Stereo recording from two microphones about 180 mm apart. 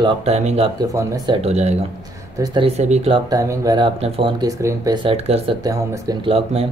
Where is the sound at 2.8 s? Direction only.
35° right (ahead or behind).